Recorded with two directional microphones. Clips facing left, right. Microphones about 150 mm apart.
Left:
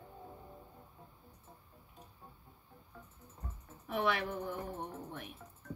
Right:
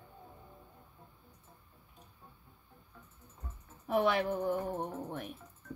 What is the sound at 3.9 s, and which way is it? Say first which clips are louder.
A woman's voice: right 5 dB; 35° right (ahead or behind).